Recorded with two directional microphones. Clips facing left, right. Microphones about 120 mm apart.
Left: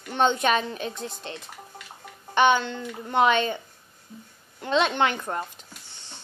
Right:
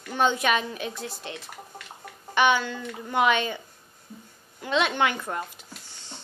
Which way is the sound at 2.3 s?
25° left (ahead or behind).